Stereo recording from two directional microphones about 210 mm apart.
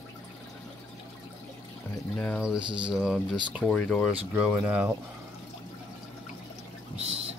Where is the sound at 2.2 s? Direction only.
Centre (ahead or behind).